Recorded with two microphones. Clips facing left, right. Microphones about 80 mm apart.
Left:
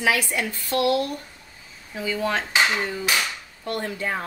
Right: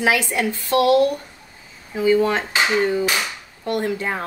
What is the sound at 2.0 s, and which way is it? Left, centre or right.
A woman's voice, right.